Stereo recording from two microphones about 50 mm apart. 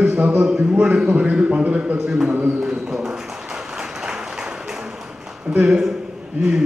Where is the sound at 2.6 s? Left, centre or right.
Centre.